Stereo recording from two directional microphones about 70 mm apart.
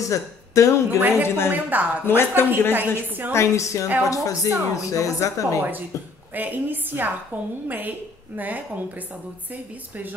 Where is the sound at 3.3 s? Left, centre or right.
Left.